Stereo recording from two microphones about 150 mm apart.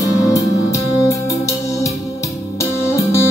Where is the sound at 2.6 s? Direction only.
20° left (ahead or behind).